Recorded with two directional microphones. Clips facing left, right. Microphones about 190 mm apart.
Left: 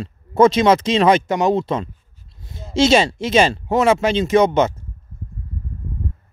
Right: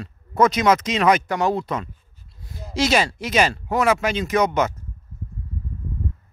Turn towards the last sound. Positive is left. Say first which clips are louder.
# left 5 dB
turn(degrees=25)  # may be behind; listen again after turning